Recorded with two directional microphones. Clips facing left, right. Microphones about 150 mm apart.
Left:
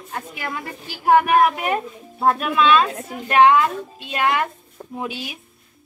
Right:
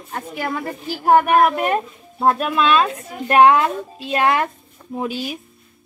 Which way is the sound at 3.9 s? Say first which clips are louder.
Right 4 dB; 40° right (ahead or behind).